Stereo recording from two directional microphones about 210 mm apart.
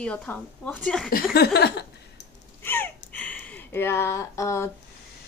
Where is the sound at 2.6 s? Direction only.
10° left (ahead or behind).